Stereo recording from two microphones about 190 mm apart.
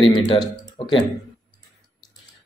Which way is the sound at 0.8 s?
25° left (ahead or behind).